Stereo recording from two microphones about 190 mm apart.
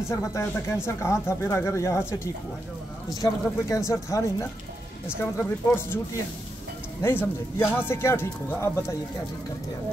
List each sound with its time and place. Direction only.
0.1 s speech: 15° left (ahead or behind)
7.0 s speech: 15° left (ahead or behind)